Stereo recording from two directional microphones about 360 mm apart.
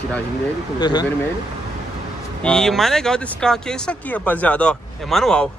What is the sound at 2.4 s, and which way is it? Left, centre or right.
Speech, centre.